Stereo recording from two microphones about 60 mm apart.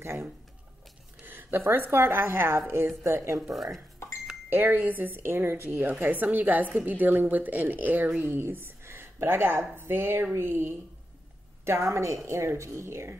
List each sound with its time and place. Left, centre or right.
0.0 s speech: right
1.2 s a sound: right
1.6 s speech: right
4.5 s a woman's voice: right
11.6 s a woman's voice: right